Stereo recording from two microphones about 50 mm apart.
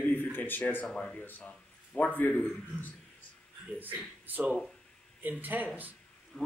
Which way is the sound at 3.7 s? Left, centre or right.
Right.